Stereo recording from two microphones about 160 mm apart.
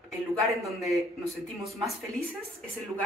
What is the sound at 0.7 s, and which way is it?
Speech, centre (ahead or behind).